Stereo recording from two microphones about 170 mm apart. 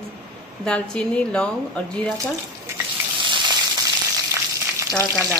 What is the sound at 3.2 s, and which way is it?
Water, 30° right (ahead or behind).